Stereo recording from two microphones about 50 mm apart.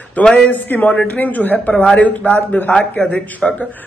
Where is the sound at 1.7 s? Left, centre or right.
Centre.